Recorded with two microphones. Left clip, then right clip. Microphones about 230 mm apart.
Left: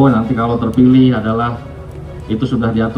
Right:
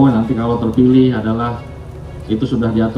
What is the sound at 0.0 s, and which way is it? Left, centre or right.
A man's voice, left.